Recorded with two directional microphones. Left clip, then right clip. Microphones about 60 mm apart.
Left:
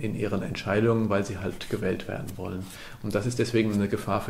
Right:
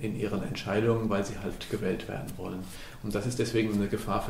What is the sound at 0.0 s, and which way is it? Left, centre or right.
Speech, left.